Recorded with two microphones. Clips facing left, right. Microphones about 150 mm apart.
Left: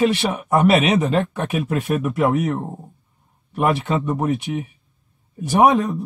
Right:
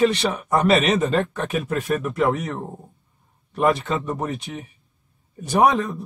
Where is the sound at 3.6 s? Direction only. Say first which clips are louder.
Left 1 dB; 15° left (ahead or behind).